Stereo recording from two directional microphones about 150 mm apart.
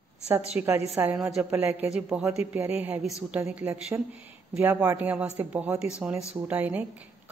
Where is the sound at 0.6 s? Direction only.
10° right (ahead or behind).